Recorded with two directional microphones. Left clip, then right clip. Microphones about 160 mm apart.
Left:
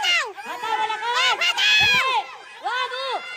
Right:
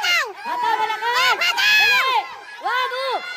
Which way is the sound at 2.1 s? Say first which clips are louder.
Right 3 dB; 40° right (ahead or behind).